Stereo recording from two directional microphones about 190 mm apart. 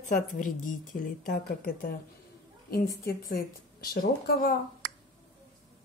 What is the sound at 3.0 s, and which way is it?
A woman's voice, 50° left (ahead or behind).